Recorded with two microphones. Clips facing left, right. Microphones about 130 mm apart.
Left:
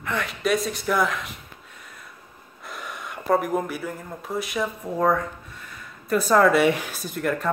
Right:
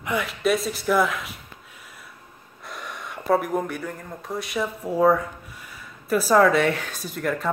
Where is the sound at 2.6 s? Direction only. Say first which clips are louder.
Even; centre (ahead or behind).